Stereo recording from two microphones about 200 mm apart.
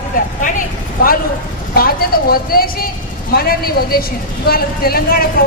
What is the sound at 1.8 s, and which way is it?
A woman's voice, 50° left (ahead or behind).